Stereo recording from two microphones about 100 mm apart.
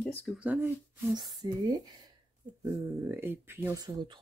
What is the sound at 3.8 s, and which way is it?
Speech, 40° right (ahead or behind).